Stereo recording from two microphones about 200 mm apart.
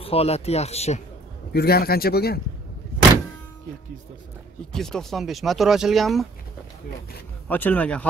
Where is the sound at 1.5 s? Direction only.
50° left (ahead or behind).